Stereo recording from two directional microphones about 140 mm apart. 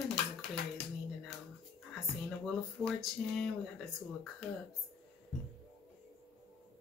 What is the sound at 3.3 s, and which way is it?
Speech, centre (ahead or behind).